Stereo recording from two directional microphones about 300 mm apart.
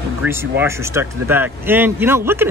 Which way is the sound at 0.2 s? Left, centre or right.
Centre.